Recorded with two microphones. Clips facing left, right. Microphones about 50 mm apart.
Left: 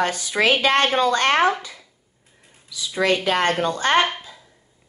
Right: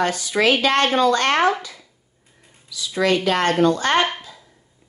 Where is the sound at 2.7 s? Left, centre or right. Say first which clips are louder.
Right 1 dB; left.